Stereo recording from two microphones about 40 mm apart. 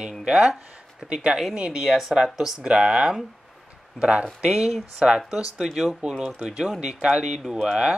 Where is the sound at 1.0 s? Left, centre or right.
Centre.